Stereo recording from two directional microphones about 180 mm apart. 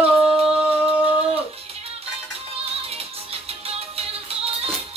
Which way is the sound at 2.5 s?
35° right (ahead or behind).